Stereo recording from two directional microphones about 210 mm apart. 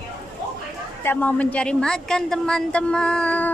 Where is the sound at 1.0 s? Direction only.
10° left (ahead or behind).